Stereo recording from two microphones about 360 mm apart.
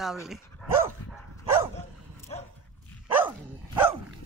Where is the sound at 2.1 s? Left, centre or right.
Centre.